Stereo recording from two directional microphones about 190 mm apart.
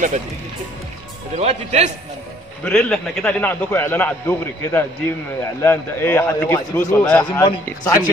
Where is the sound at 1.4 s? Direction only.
35° right (ahead or behind).